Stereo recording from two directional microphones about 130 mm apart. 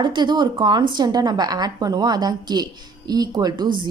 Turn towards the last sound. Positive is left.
turn(degrees=-35)  # may be behind; listen again after turning